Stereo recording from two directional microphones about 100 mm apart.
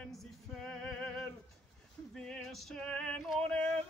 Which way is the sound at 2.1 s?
5° left (ahead or behind).